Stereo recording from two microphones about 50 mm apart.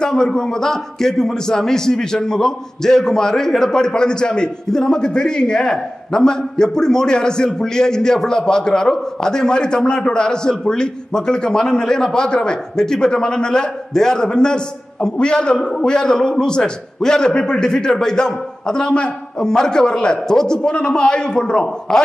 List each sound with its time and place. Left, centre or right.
0.0 s a man's voice: centre